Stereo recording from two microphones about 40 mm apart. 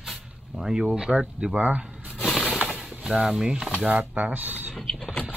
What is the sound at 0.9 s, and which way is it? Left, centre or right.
Speech, right.